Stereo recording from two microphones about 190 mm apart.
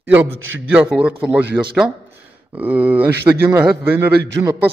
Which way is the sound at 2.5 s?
10° right (ahead or behind).